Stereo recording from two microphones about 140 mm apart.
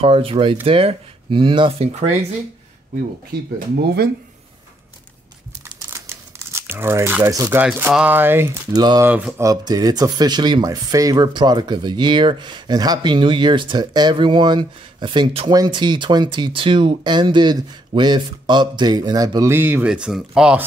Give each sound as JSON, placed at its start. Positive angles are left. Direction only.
{"t": 0.0, "sound": "speech", "side_deg": -40}
{"t": 3.3, "sound": "speech", "side_deg": -90}
{"t": 5.9, "sound": "crumpling", "side_deg": -20}
{"t": 7.6, "sound": "speech", "side_deg": -15}
{"t": 8.7, "sound": "speech", "side_deg": -30}
{"t": 9.0, "sound": "speech", "side_deg": -10}
{"t": 9.4, "sound": "speech", "side_deg": -25}